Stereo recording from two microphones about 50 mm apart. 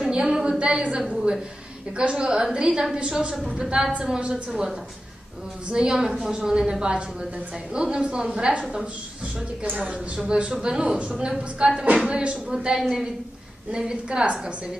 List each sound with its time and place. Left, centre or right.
0.0 s a sound: centre
2.0 s a woman's voice: centre
12.5 s a woman's voice: centre